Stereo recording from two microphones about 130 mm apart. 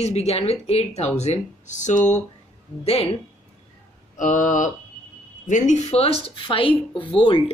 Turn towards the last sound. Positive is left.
turn(degrees=40)  # may be behind; listen again after turning